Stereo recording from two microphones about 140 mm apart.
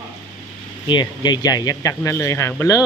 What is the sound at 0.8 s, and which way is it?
Speech, 30° left (ahead or behind).